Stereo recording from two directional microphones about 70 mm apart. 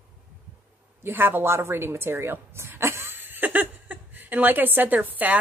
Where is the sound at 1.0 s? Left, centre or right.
Right.